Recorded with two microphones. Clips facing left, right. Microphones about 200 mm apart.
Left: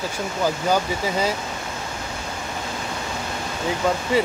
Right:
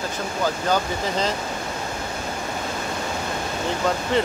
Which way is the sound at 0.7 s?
10° left (ahead or behind).